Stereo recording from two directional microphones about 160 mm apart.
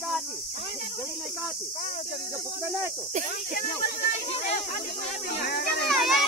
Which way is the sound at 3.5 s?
65° left (ahead or behind).